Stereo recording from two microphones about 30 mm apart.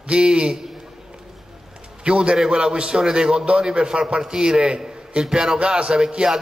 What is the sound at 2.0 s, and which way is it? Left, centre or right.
A man's voice, right.